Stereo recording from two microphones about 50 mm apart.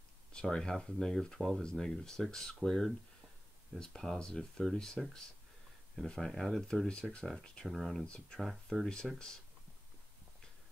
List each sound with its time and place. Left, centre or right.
0.3 s speech: centre
6.0 s speech: centre
6.9 s speech: centre
7.6 s speech: centre
8.0 s speech: centre
8.4 s speech: centre